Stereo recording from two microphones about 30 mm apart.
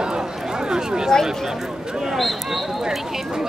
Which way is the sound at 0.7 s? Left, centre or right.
Right.